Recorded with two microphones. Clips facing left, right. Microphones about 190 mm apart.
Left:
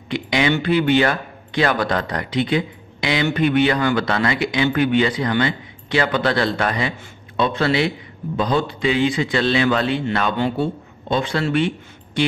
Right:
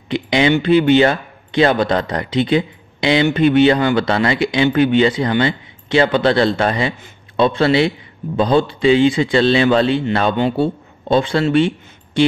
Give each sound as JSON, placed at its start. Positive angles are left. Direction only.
{"t": 0.1, "sound": "a man's voice", "side_deg": -25}